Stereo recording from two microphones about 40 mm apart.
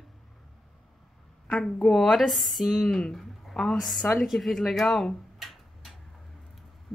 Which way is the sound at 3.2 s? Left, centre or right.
Centre.